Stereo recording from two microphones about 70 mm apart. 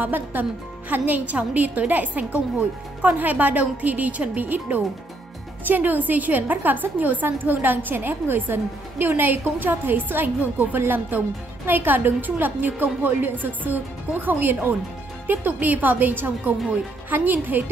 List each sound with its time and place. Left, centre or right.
0.0 s a woman's voice: right